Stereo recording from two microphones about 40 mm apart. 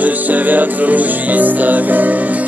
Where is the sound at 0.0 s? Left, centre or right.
Right.